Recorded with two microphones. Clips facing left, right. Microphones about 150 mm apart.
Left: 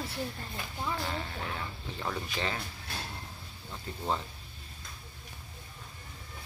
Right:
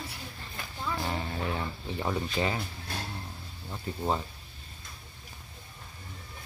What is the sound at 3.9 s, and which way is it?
Speech, 10° right (ahead or behind).